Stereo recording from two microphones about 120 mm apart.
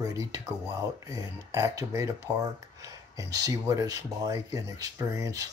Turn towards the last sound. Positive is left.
turn(degrees=-30)  # may be behind; listen again after turning